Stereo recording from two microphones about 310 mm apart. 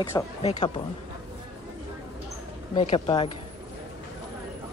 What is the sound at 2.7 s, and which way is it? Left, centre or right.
Speech, centre.